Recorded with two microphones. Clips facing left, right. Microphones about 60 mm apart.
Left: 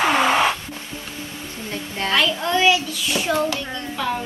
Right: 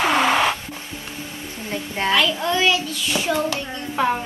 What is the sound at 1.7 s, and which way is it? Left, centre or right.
Speech, right.